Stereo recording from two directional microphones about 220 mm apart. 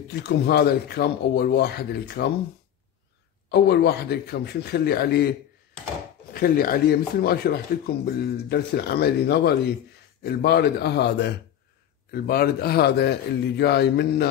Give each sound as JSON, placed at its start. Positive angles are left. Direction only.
{"t": 0.1, "sound": "speech", "side_deg": 45}
{"t": 3.4, "sound": "speech", "side_deg": 50}
{"t": 6.3, "sound": "speech", "side_deg": 40}